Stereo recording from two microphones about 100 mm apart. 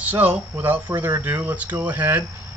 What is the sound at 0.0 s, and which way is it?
Speech, 20° right (ahead or behind).